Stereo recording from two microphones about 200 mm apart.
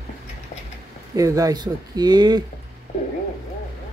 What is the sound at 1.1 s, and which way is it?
Speech, 15° right (ahead or behind).